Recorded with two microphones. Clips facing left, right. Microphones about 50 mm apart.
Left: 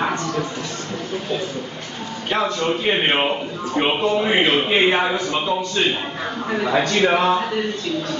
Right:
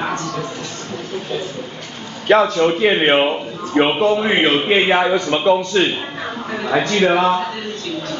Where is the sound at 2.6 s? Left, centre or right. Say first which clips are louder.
Right 6 dB; right.